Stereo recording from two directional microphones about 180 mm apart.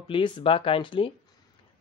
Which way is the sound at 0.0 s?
25° left (ahead or behind).